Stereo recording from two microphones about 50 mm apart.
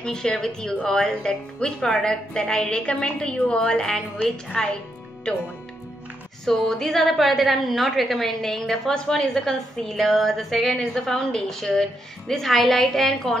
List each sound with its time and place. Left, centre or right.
0.0 s a woman's voice: centre
6.4 s a woman's voice: centre